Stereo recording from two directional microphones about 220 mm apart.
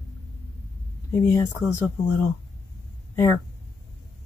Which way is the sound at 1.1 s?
10° left (ahead or behind).